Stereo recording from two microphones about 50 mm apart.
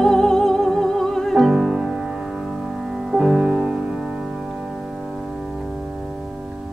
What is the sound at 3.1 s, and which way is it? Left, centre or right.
Music, centre.